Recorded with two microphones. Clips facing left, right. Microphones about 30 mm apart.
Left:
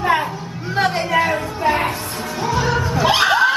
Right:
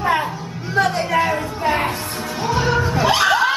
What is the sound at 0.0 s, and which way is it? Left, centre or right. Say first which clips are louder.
Chatter: left 1 dB; centre.